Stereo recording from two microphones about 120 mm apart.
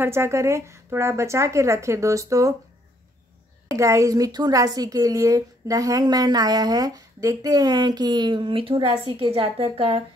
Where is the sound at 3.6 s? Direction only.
25° right (ahead or behind).